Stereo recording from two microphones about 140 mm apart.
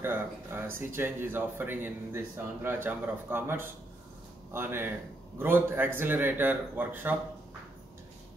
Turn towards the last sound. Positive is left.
turn(degrees=-15)  # may be behind; listen again after turning